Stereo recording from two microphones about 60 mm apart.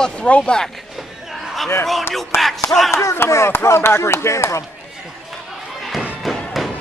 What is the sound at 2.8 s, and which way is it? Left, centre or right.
Speech, left.